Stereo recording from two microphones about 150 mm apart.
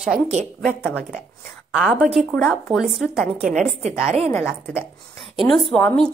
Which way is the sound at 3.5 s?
50° right (ahead or behind).